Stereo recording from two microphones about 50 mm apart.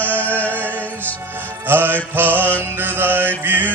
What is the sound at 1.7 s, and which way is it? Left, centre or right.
Music, right.